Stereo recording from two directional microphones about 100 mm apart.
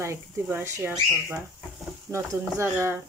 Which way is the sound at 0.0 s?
25° right (ahead or behind).